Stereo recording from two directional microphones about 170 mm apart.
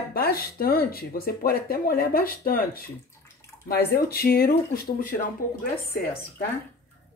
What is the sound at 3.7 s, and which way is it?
Speech, 65° left (ahead or behind).